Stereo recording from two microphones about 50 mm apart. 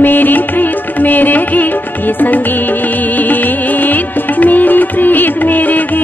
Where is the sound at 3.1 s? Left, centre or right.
Left.